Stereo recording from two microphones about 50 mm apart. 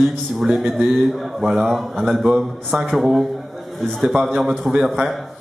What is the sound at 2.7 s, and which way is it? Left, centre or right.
Speech, right.